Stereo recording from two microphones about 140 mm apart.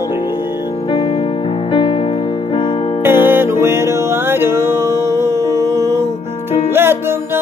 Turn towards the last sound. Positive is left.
turn(degrees=-15)  # may be behind; listen again after turning